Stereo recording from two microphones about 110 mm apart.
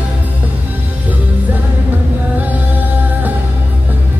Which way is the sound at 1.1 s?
15° right (ahead or behind).